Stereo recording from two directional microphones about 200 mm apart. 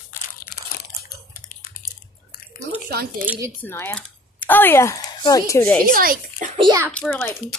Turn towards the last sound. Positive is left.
turn(degrees=10)  # may be behind; listen again after turning